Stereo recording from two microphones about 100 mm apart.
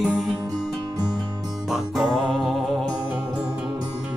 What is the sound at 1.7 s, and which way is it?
Music, 5° right (ahead or behind).